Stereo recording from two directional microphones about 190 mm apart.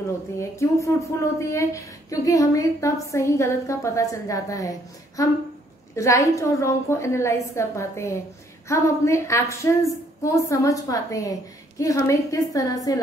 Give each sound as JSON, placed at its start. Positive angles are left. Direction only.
{"t": 0.4, "sound": "speech", "side_deg": 15}